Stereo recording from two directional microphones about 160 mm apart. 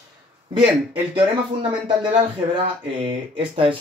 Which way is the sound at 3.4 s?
30° right (ahead or behind).